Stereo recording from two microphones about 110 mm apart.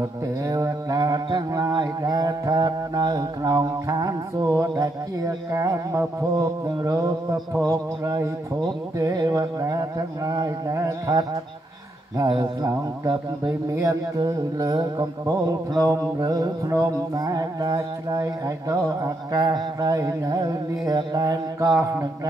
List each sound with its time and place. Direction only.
0.5 s mantra: 30° right (ahead or behind)
12.4 s mantra: 30° right (ahead or behind)